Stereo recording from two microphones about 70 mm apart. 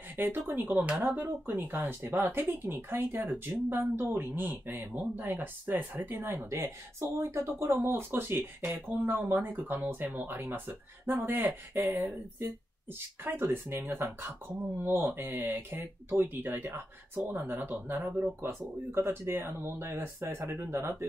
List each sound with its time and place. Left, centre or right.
0.1 s a sound: right
0.6 s speech: right
13.2 s speech: right